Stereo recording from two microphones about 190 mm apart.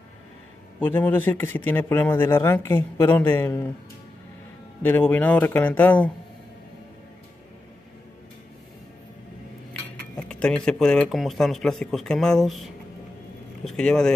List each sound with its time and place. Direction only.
0.7 s speech: 10° left (ahead or behind)
4.8 s speech: 10° left (ahead or behind)
10.1 s speech: 5° left (ahead or behind)
13.7 s speech: 5° left (ahead or behind)